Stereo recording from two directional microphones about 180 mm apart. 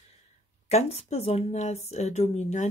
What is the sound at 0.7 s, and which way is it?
Speech, 35° left (ahead or behind).